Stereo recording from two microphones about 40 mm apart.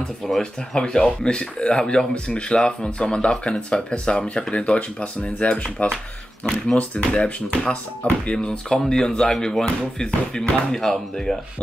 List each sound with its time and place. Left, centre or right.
0.4 s speech: centre